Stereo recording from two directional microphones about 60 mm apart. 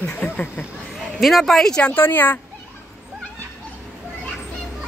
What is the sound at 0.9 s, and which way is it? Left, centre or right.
Speech, centre.